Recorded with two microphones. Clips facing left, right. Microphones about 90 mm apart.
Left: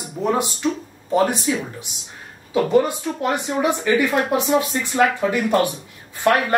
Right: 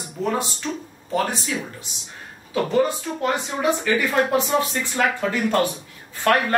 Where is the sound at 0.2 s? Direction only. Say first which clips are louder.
Left 4 dB; 15° left (ahead or behind).